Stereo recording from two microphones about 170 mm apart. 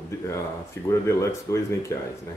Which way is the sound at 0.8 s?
15° left (ahead or behind).